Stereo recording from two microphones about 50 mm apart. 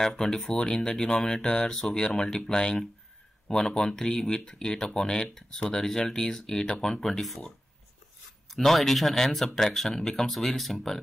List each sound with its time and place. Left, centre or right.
0.0 s speech: centre
2.0 s speech: centre
2.2 s speech: centre
2.5 s speech: centre